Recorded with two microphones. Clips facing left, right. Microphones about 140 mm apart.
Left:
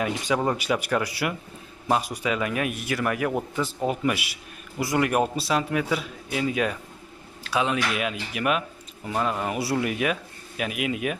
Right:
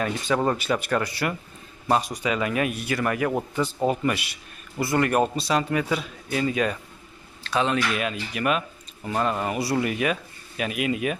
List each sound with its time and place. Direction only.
0.0 s a man's voice: 15° left (ahead or behind)